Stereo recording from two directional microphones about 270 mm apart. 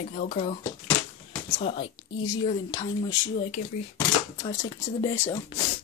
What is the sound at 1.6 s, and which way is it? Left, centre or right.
Speech, centre.